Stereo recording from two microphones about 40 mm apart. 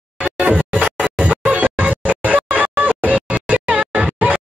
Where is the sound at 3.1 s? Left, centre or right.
Right.